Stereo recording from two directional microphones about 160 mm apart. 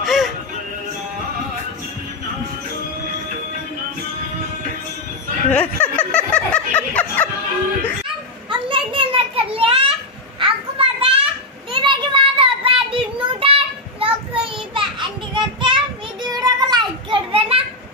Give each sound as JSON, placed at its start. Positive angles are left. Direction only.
{"t": 0.0, "sound": "music", "side_deg": 0}
{"t": 5.5, "sound": "snicker", "side_deg": 10}
{"t": 8.5, "sound": "children playing", "side_deg": -35}
{"t": 11.7, "sound": "child singing", "side_deg": -30}
{"t": 16.3, "sound": "children playing", "side_deg": -25}